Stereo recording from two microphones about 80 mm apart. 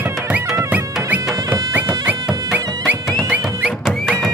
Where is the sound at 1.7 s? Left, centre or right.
Right.